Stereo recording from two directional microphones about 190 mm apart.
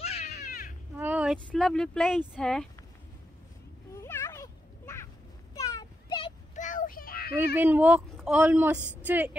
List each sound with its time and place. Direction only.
0.0 s music: 35° left (ahead or behind)
0.3 s music: 50° left (ahead or behind)
0.9 s a sound: 10° right (ahead or behind)
1.5 s speech: 5° left (ahead or behind)
3.9 s a sound: 15° left (ahead or behind)
6.5 s child singing: 40° left (ahead or behind)
7.5 s a woman's voice: 10° right (ahead or behind)
8.7 s a woman's voice: 10° left (ahead or behind)
9.0 s a woman's voice: 10° right (ahead or behind)